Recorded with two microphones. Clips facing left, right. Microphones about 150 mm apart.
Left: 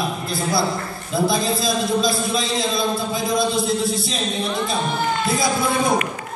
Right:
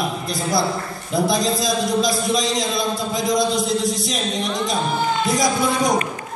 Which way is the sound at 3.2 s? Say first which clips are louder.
Right 2 dB; 20° right (ahead or behind).